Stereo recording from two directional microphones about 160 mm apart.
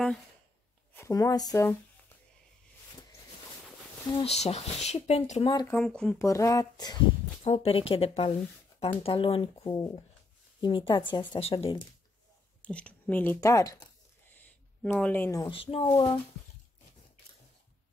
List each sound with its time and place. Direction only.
0.9 s speech: 20° left (ahead or behind)
4.1 s speech: 35° left (ahead or behind)
5.7 s speech: 5° left (ahead or behind)
6.1 s speech: 20° left (ahead or behind)
7.4 s speech: 35° left (ahead or behind)
12.6 s speech: 10° left (ahead or behind)
14.8 s speech: 5° left (ahead or behind)
15.4 s speech: 35° left (ahead or behind)